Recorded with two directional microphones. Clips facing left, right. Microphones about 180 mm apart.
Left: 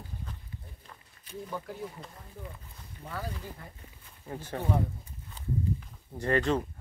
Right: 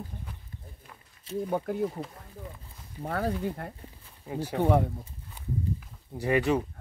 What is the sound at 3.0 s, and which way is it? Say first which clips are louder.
Speech: right 10 dB; 60° right (ahead or behind).